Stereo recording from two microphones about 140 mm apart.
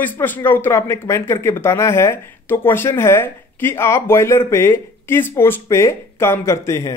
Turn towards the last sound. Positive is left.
turn(degrees=20)  # may be behind; listen again after turning